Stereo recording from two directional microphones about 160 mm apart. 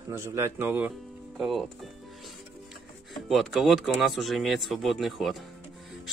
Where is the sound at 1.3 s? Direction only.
Centre (ahead or behind).